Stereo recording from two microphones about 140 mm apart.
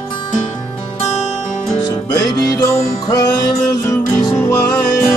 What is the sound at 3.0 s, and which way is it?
Music, 25° left (ahead or behind).